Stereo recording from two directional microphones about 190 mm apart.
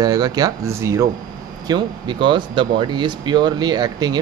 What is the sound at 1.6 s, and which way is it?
Speech, 25° right (ahead or behind).